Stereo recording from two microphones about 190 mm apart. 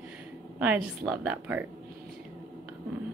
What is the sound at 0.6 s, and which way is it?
A woman's voice, 5° right (ahead or behind).